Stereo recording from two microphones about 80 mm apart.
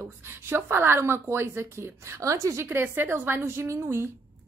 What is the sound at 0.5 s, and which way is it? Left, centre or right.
A woman's voice, right.